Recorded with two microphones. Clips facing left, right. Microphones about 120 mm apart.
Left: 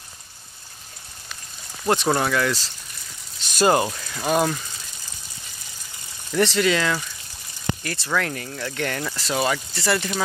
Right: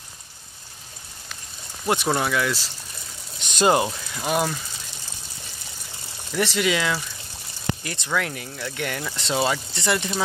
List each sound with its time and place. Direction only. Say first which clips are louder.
2.0 s speech: left 1 dB; centre (ahead or behind)
3.3 s speech: left 1 dB; 20° right (ahead or behind)
4.2 s speech: left 3 dB; 5° right (ahead or behind)
6.3 s speech: left 3 dB; 15° right (ahead or behind)
9.1 s speech: right 2 dB; 20° right (ahead or behind)